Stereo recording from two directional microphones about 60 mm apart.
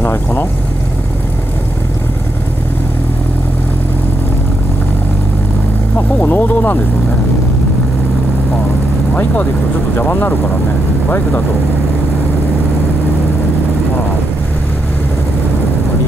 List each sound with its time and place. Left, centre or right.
0.0 s speech: left
5.9 s speech: left
9.1 s speech: left